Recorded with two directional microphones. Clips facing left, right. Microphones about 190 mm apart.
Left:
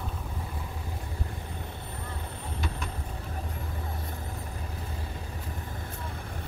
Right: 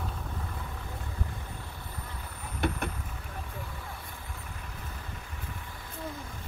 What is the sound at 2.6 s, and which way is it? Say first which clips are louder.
Vehicle: right 8 dB; 60° right (ahead or behind).